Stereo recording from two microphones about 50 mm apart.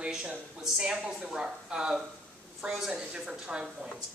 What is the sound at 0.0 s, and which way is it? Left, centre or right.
A man's voice, centre.